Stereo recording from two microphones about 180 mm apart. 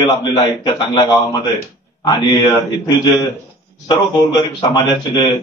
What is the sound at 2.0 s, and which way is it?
Speech, 20° left (ahead or behind).